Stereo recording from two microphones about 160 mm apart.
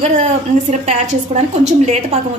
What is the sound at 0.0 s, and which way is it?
A woman's voice, 45° right (ahead or behind).